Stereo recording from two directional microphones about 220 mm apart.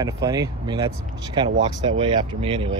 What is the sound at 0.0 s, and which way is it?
Speech, 15° right (ahead or behind).